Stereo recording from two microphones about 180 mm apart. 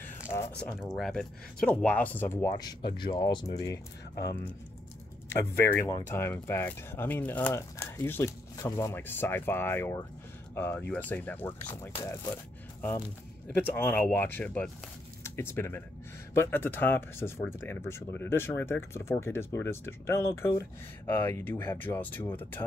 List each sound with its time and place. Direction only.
0.3 s a sound: 20° left (ahead or behind)
0.7 s speech: centre (ahead or behind)
13.5 s speech: 10° left (ahead or behind)